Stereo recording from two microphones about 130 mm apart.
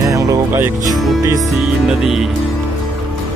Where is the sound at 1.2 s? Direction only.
25° right (ahead or behind).